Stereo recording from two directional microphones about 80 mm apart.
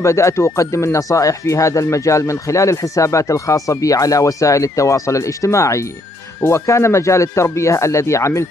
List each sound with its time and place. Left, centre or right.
0.0 s speech: left